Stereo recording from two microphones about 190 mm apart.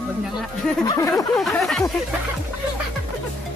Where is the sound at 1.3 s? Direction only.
Centre (ahead or behind).